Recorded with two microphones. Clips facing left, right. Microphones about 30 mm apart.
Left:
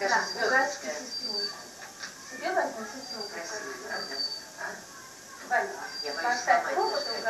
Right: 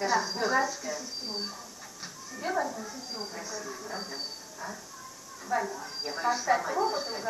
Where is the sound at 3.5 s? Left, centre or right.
Left.